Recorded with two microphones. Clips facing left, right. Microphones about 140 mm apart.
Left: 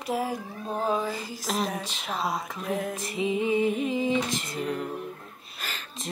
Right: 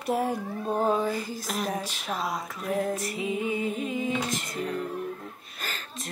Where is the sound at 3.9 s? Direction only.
25° left (ahead or behind).